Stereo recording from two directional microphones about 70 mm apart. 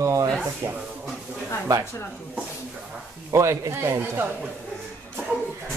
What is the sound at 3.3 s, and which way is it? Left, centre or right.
Speech, right.